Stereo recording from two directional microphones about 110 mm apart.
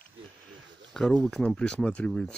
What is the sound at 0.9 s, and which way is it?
Speech, 5° left (ahead or behind).